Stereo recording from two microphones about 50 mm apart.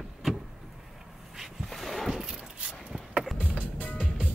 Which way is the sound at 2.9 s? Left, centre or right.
Right.